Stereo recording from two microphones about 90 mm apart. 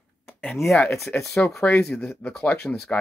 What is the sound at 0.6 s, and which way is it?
Speech, 10° left (ahead or behind).